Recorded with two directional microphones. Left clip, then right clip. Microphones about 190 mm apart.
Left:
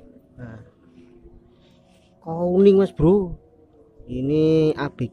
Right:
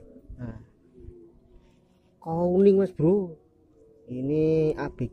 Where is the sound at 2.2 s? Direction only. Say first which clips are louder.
Left 2 dB; 15° right (ahead or behind).